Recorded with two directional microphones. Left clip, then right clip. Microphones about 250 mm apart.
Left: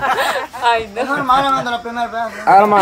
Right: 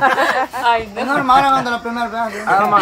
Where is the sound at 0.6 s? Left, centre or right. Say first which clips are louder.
Left 2 dB; left.